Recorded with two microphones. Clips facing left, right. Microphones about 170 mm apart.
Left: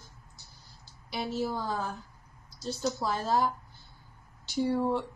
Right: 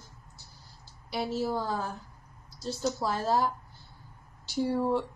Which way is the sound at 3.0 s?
5° right (ahead or behind).